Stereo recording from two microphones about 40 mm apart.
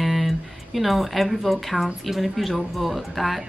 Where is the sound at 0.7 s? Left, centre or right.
Centre.